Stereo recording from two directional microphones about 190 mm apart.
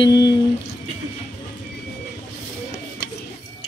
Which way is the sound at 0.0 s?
20° left (ahead or behind).